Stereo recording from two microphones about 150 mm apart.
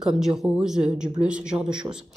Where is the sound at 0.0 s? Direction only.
5° right (ahead or behind).